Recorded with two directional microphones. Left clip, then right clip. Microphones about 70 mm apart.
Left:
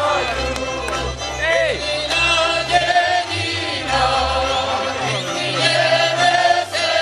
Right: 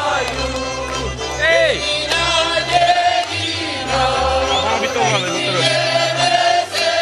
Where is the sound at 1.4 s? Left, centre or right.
Right.